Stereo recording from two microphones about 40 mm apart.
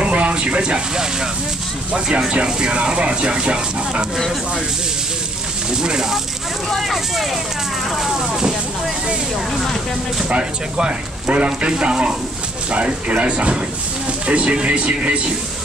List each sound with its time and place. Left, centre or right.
0.0 s a sound: right
1.9 s speech: right
5.7 s speech: centre
6.7 s speech: centre
10.3 s speech: right